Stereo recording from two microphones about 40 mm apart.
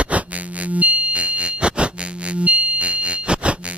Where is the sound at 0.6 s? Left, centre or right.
Right.